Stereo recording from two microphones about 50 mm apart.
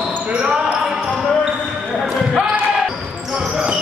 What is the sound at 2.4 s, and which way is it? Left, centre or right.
Basketball bounce, centre.